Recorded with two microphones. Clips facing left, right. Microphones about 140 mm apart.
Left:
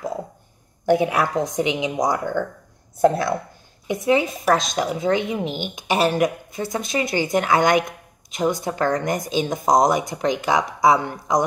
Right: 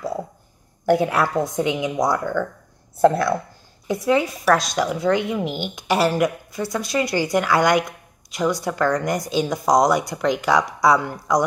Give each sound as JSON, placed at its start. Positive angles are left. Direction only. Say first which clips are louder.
{"t": 0.8, "sound": "a woman's voice", "louder": "even", "side_deg": 20}